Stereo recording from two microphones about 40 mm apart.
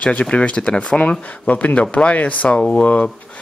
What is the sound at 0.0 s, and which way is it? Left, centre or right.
Speech, left.